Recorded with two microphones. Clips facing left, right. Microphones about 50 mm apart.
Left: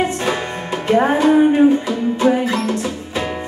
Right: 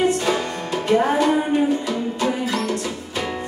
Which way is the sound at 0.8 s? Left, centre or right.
Left.